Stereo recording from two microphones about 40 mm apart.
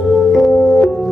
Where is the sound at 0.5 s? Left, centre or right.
Centre.